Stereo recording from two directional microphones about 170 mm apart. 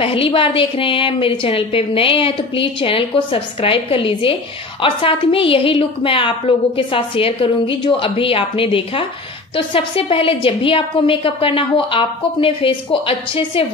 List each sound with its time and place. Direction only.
0.0 s a woman's voice: 30° left (ahead or behind)